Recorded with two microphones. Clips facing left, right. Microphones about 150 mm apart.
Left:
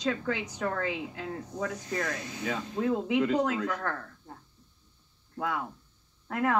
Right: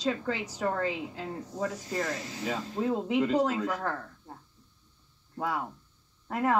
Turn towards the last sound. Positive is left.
turn(degrees=-5)  # may be behind; listen again after turning